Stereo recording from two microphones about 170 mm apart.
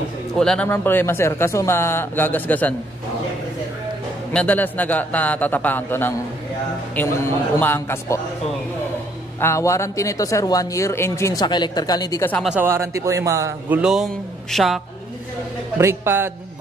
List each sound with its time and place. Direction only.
0.4 s speech: 5° left (ahead or behind)
4.3 s speech: 10° left (ahead or behind)
9.4 s speech: 15° left (ahead or behind)
12.4 s a man's voice: 15° right (ahead or behind)
15.8 s a man's voice: 15° right (ahead or behind)